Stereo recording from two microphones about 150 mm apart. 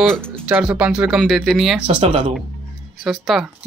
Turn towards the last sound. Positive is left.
turn(degrees=0)  # may be behind; listen again after turning